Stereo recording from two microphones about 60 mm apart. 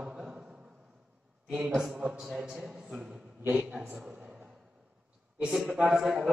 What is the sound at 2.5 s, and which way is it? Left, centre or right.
A man's voice, centre.